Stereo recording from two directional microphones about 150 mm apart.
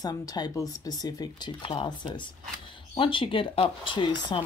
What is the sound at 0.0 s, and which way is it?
Speech, 25° left (ahead or behind).